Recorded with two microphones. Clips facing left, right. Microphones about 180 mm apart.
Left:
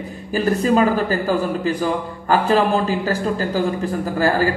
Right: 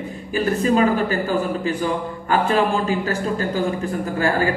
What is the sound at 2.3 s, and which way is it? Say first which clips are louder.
A man's voice: left 2 dB; 35° left (ahead or behind).